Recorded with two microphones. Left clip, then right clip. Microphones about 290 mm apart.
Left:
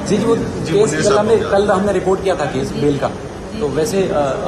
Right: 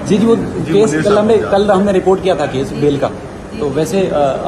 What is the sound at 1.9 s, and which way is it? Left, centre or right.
Speech, right.